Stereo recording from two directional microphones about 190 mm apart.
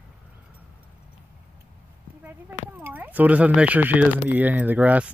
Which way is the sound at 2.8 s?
10° right (ahead or behind).